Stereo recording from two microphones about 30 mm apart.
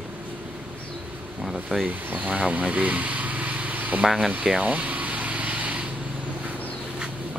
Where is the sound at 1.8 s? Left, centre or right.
Right.